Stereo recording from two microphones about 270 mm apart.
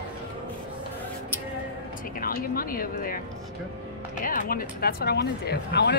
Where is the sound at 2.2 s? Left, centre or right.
Left.